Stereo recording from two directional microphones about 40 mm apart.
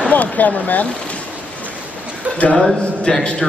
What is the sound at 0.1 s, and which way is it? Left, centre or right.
Speech, left.